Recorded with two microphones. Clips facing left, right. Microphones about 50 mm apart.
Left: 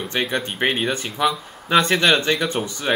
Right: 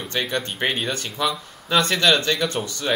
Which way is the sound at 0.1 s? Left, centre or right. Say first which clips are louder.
Left 1 dB; centre.